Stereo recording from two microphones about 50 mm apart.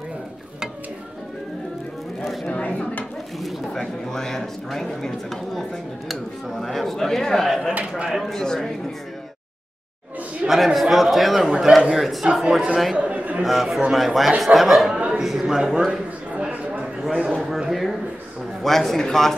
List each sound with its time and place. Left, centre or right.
2.4 s a sound: left
3.3 s speech: centre
10.4 s speech: centre
11.4 s a man's voice: centre
11.9 s a man's voice: centre
12.9 s chatter: right
13.4 s speech: centre
14.9 s a sound: centre
15.1 s a man's voice: centre
15.9 s a sound: centre
17.3 s speech: centre
18.6 s speech: centre